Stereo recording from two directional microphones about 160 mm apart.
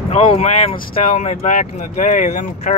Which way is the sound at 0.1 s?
45° left (ahead or behind).